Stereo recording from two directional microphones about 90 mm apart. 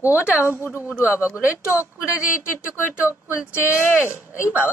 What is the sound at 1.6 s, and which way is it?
Speech, 30° left (ahead or behind).